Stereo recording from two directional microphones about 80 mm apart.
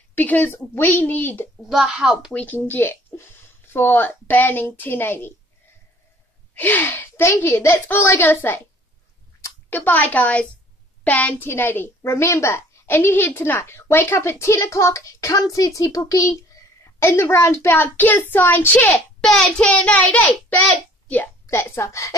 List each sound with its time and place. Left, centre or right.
0.1 s a woman's voice: left
1.7 s a child's voice: centre
2.3 s a woman's voice: left
6.5 s gasp: left
7.4 s a woman's voice: left
17.0 s a woman's voice: left
17.9 s a woman's voice: left
18.9 s a child's voice: centre
19.7 s a woman's voice: centre
21.5 s a woman's voice: left